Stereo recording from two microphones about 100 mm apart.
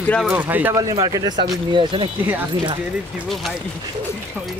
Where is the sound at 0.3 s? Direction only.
20° right (ahead or behind).